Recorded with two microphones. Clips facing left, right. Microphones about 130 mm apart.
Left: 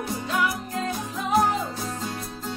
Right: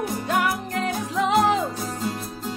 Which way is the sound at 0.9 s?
90° right.